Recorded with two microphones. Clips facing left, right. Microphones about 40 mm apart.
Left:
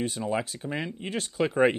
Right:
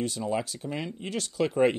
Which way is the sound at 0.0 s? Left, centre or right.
Left.